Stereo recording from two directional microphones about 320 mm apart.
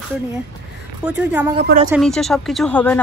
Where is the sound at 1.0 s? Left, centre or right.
Centre.